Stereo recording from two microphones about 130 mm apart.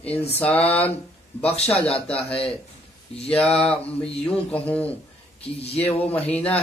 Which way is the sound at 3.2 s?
5° left (ahead or behind).